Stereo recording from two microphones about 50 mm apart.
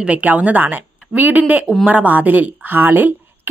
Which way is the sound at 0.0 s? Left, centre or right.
Right.